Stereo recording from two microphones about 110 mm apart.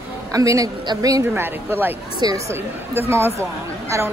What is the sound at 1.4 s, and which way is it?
Speech, 20° right (ahead or behind).